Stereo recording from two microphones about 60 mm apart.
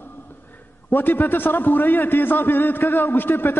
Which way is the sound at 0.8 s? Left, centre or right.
Left.